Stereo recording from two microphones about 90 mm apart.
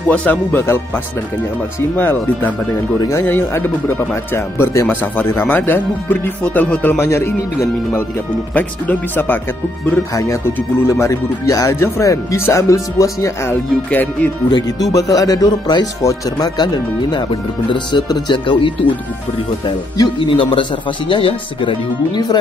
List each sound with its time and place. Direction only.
0.1 s speech: 15° left (ahead or behind)
8.5 s speech: 20° left (ahead or behind)
10.1 s speech: 35° left (ahead or behind)
13.8 s speech: 15° left (ahead or behind)
14.5 s speech: 40° left (ahead or behind)
17.3 s speech: 65° left (ahead or behind)
20.2 s speech: 70° left (ahead or behind)